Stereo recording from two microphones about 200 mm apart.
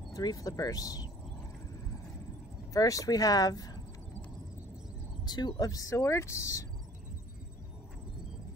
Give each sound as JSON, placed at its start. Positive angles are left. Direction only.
{"t": 0.1, "sound": "speech", "side_deg": 20}
{"t": 2.7, "sound": "speech", "side_deg": 15}
{"t": 5.2, "sound": "speech", "side_deg": 20}